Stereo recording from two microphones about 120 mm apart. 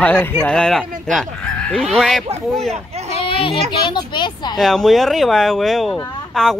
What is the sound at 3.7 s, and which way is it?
Speech, 40° left (ahead or behind).